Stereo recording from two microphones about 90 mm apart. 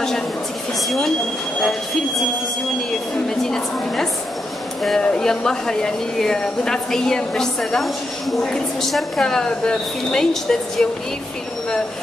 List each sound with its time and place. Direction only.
0.8 s speech: 5° left (ahead or behind)
3.3 s a sound: 5° left (ahead or behind)
4.8 s a woman's voice: 10° left (ahead or behind)